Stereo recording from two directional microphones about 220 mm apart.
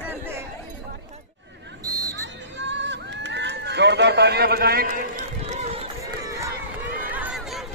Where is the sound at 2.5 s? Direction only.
55° right (ahead or behind); by 5.8 s 35° right (ahead or behind).